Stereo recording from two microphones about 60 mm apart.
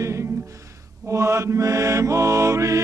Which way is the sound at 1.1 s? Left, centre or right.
Right.